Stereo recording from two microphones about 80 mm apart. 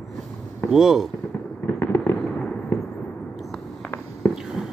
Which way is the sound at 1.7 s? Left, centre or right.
Left.